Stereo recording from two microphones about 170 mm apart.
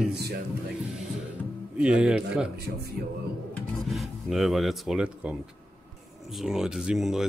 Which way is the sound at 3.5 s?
Centre (ahead or behind).